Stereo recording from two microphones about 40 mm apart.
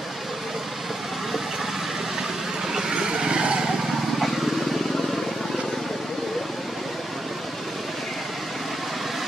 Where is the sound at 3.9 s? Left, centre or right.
Centre.